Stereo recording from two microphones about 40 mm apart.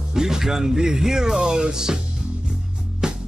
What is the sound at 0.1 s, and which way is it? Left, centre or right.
Speech, centre.